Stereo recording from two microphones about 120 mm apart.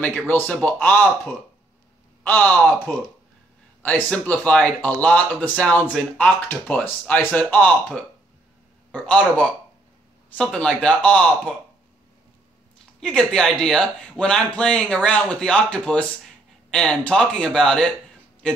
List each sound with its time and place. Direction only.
0.3 s speech: 15° left (ahead or behind)
3.8 s speech: 10° left (ahead or behind)
13.0 s speech: 5° left (ahead or behind)